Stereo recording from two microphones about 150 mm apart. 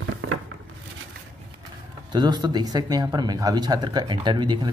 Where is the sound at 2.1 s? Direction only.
30° right (ahead or behind).